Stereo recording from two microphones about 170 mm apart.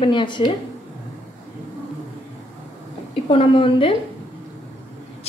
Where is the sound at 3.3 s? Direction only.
30° left (ahead or behind).